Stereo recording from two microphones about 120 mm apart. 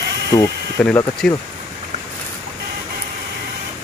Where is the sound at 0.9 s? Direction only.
10° left (ahead or behind).